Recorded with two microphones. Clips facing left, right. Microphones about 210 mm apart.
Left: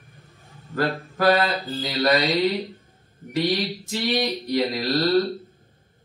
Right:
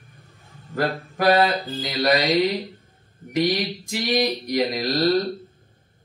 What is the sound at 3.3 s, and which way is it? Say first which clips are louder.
Speech: right 1 dB; 15° right (ahead or behind).